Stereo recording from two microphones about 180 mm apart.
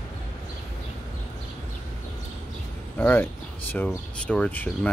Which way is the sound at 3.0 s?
10° left (ahead or behind).